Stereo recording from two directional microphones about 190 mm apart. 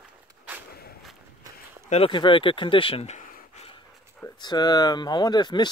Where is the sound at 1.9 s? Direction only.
30° left (ahead or behind).